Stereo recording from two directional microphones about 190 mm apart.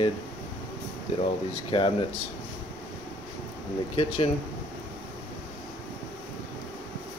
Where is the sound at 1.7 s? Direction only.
25° left (ahead or behind).